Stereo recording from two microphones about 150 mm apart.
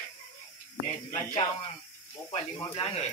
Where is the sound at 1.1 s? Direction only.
30° left (ahead or behind).